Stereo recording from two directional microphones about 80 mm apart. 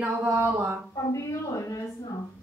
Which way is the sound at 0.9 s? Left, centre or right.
Left.